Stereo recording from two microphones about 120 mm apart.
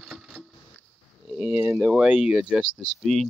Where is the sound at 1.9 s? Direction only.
5° right (ahead or behind).